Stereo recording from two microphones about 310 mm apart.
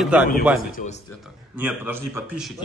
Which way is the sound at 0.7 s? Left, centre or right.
Left.